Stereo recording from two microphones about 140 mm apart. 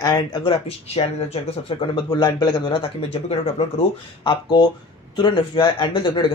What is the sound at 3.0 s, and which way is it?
Speech, 50° left (ahead or behind).